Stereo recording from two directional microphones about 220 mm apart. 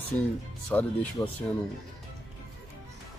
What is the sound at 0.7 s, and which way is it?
Speech, 5° left (ahead or behind).